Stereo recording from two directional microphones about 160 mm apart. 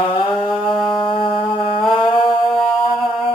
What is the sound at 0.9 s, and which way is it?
Music, 30° left (ahead or behind).